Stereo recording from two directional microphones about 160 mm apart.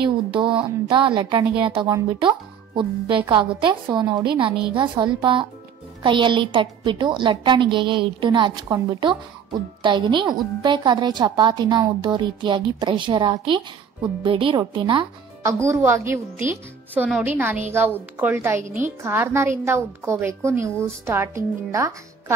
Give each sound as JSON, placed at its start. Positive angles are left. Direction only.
{"t": 0.0, "sound": "a woman's voice", "side_deg": -30}
{"t": 15.4, "sound": "a woman's voice", "side_deg": -15}